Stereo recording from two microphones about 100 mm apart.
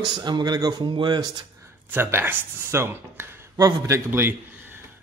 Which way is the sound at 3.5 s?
35° right (ahead or behind).